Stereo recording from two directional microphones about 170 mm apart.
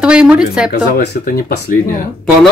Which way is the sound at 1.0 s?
60° left (ahead or behind).